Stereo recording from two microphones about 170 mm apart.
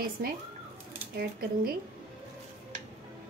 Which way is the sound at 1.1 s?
60° right (ahead or behind).